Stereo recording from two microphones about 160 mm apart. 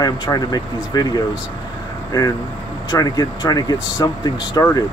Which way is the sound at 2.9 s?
25° left (ahead or behind).